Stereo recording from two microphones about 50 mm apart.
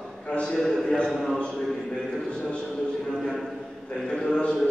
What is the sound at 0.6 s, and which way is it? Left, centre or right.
Speech, centre.